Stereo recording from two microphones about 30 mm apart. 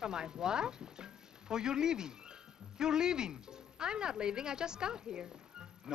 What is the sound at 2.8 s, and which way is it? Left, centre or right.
A man's voice, right.